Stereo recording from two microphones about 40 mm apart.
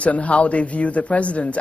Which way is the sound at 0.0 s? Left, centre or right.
Left.